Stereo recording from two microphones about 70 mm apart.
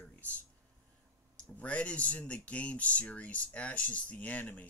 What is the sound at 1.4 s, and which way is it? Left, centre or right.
Speech, centre.